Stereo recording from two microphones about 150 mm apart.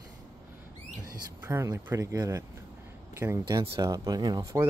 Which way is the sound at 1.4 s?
15° right (ahead or behind).